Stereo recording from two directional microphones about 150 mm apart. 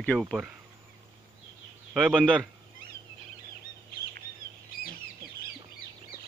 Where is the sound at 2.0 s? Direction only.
5° left (ahead or behind).